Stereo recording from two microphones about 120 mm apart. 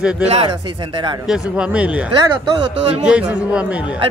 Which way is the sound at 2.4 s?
40° right (ahead or behind).